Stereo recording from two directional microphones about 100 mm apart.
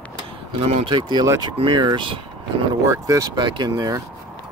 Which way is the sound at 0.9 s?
50° right (ahead or behind).